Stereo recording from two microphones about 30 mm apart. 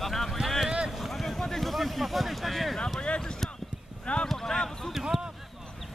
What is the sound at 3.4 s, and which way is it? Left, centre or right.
Clip-clop, centre.